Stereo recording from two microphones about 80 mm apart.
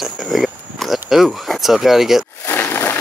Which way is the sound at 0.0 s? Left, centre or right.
Centre.